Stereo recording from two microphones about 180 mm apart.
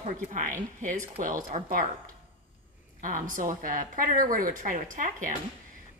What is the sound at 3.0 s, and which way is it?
A woman's voice, 50° right (ahead or behind).